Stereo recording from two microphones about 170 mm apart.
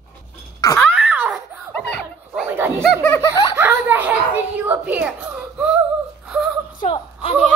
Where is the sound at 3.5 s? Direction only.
10° right (ahead or behind).